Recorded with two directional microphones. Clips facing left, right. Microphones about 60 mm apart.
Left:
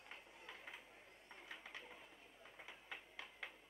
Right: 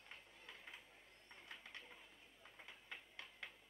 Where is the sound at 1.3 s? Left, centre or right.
Centre.